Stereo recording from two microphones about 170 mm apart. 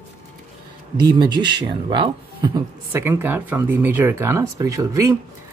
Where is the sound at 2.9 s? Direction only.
10° right (ahead or behind).